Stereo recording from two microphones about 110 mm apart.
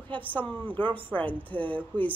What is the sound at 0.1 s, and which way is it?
Speech, 15° left (ahead or behind).